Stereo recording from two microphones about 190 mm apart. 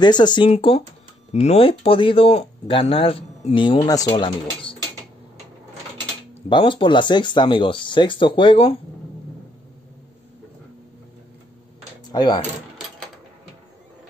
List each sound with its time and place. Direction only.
0.0 s speech: 25° left (ahead or behind)
6.5 s speech: 25° left (ahead or behind)
12.1 s speech: 20° left (ahead or behind)